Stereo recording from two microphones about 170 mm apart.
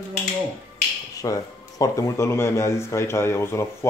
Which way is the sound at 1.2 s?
20° left (ahead or behind).